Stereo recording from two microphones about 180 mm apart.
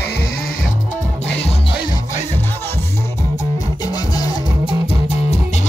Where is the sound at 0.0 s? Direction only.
60° left (ahead or behind).